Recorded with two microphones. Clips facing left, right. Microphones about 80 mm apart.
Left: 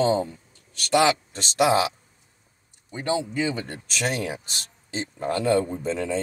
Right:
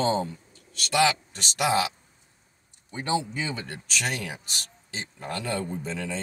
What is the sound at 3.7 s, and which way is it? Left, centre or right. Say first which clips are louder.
Speech: left 3 dB; left.